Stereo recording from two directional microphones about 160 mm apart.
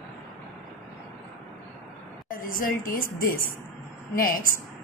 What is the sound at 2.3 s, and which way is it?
A woman's voice, 60° left (ahead or behind).